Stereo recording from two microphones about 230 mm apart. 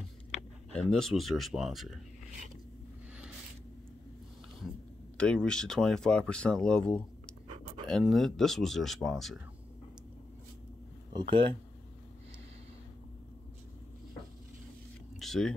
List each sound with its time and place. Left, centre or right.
0.7 s speech: centre
5.1 s speech: centre
11.1 s speech: right
15.1 s a sound: centre